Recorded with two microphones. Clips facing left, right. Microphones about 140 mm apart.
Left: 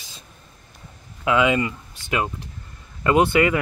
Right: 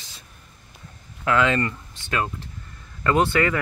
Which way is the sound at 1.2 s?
15° left (ahead or behind).